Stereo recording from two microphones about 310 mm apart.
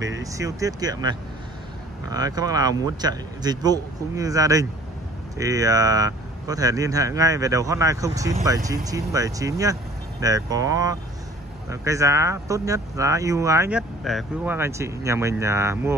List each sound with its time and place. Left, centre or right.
0.2 s speech: centre